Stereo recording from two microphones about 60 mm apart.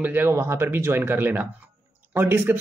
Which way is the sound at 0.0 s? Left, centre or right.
Right.